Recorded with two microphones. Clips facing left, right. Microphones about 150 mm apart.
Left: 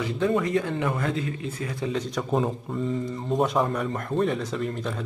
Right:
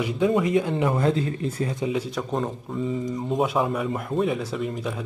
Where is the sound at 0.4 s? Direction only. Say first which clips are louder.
Right 3 dB; 15° right (ahead or behind); by 1.8 s 35° right (ahead or behind).